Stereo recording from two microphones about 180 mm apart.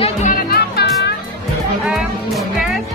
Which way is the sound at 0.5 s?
65° left (ahead or behind).